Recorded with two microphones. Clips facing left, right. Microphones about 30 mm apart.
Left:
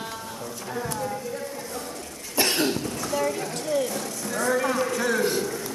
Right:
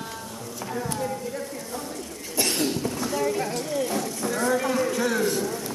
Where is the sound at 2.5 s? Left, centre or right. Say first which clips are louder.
Left 1 dB; centre.